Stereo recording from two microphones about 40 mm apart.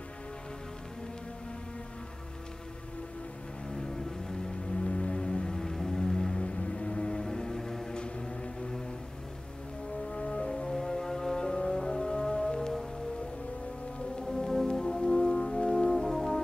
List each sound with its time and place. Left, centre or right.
3.7 s music: centre
4.7 s music: left
6.4 s music: left
10.0 s music: left
14.2 s music: centre
15.9 s brass instrument: centre